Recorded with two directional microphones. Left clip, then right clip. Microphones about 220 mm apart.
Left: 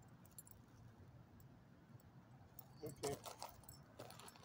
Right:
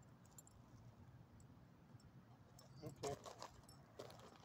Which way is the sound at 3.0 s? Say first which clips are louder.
Left 2 dB; 20° right (ahead or behind).